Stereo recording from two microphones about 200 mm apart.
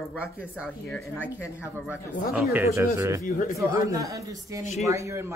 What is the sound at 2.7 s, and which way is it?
Speech, 15° right (ahead or behind).